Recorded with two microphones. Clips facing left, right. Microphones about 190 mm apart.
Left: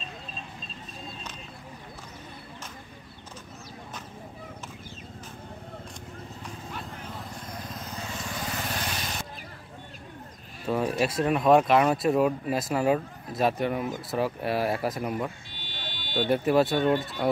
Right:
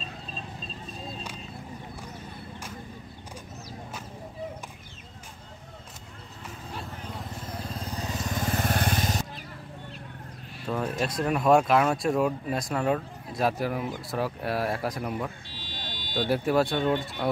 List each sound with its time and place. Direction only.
7.6 s vehicle: 30° right (ahead or behind)
10.7 s speech: 5° left (ahead or behind)
15.4 s buzzer: 35° right (ahead or behind)
16.3 s speech: centre (ahead or behind)